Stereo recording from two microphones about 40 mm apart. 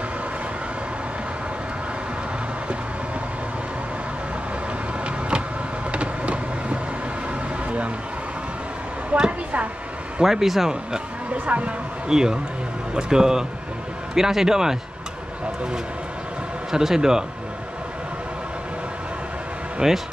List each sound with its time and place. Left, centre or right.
5.9 s vehicle: right
9.1 s a sound: right
10.2 s a man's voice: centre
11.3 s speech: right
12.1 s a man's voice: centre
16.7 s a man's voice: centre
19.8 s speech: centre